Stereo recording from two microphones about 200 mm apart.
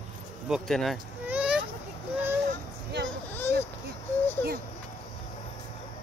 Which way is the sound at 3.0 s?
10° left (ahead or behind).